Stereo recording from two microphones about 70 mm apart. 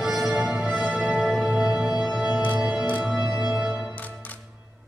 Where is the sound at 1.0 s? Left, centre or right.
Centre.